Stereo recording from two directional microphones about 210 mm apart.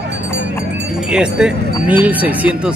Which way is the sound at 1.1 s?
5° right (ahead or behind).